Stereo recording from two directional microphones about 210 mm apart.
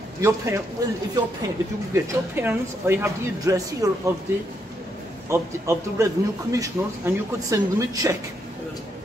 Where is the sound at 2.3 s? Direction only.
10° right (ahead or behind).